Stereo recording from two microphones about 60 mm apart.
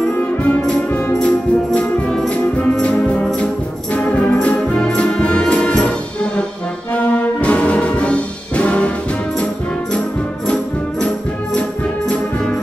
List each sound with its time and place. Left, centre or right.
0.0 s music: left
3.9 s music: left
7.0 s brass instrument: left
9.9 s brass instrument: centre